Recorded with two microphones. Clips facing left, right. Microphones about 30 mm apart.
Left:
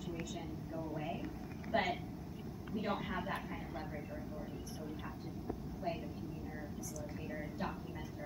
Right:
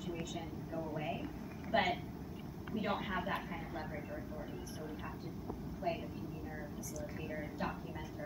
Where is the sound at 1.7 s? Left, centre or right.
Centre.